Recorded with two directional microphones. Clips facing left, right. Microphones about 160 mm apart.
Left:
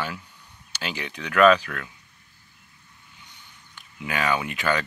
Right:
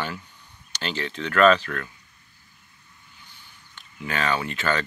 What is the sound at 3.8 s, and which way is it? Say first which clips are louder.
Speech: even; 10° left (ahead or behind).